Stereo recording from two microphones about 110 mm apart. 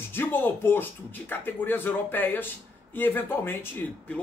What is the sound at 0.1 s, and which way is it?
Speech, 20° left (ahead or behind).